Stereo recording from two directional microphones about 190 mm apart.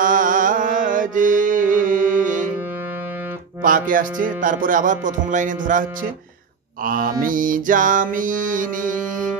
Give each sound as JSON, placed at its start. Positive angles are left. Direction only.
{"t": 0.0, "sound": "music", "side_deg": -45}
{"t": 3.6, "sound": "music", "side_deg": -45}